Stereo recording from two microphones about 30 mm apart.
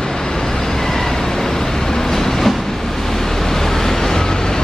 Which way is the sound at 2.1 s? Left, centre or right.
Centre.